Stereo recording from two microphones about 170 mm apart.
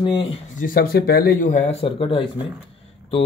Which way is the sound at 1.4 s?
50° left (ahead or behind).